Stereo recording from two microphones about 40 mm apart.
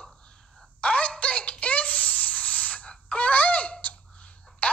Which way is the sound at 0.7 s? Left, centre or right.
Left.